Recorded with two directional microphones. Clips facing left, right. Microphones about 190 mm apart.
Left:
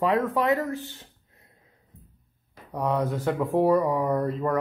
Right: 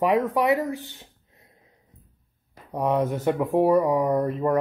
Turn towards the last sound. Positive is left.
turn(degrees=-20)  # may be behind; listen again after turning